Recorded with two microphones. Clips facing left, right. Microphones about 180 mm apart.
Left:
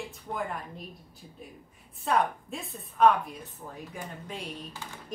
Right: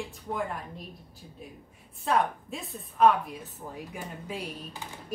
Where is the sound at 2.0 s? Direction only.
Centre (ahead or behind).